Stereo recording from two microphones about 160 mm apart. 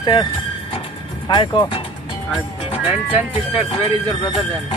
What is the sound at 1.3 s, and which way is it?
Speech, 30° left (ahead or behind).